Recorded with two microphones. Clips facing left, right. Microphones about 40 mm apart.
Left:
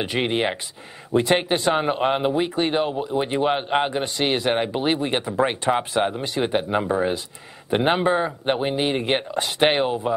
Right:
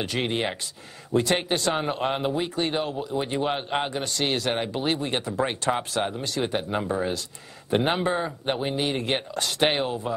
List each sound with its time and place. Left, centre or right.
0.0 s a man's voice: left